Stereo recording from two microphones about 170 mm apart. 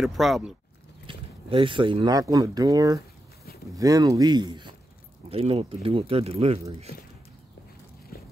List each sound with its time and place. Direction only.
0.0 s speech: centre (ahead or behind)
1.0 s speech: 30° right (ahead or behind)
8.1 s walk: 60° left (ahead or behind)